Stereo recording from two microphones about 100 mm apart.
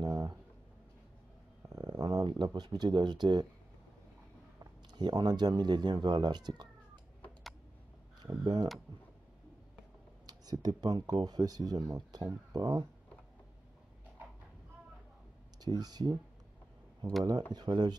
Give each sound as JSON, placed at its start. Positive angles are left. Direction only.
{"t": 0.0, "sound": "a sound", "side_deg": -40}
{"t": 1.7, "sound": "speech", "side_deg": -40}
{"t": 4.9, "sound": "speech", "side_deg": -45}
{"t": 10.2, "sound": "speech", "side_deg": -40}
{"t": 15.6, "sound": "speech", "side_deg": -40}